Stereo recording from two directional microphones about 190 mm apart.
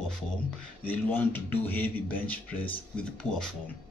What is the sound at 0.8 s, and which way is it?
Speech, 10° left (ahead or behind).